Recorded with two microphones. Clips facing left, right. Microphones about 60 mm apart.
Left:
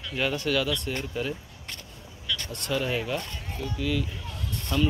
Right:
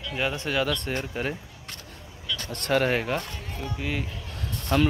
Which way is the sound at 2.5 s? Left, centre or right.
Right.